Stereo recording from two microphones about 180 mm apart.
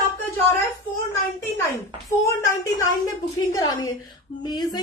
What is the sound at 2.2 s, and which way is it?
A woman's voice, 15° left (ahead or behind).